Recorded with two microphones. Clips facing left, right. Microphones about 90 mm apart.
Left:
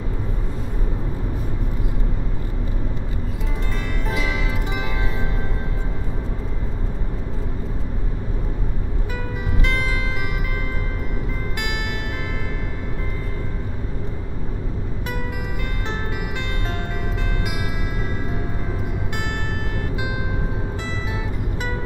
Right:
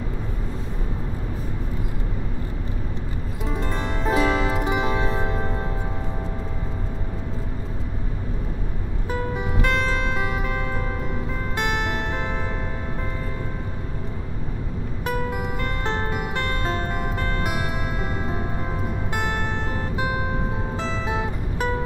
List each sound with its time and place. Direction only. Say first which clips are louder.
4.0 s music: right 7 dB; 35° right (ahead or behind)